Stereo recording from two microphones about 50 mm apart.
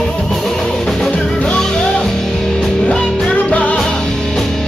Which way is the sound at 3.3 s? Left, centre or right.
Left.